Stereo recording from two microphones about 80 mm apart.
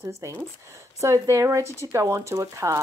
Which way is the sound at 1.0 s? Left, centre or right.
Right.